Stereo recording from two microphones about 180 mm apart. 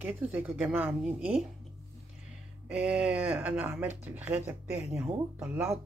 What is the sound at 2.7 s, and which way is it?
Speech, 5° right (ahead or behind).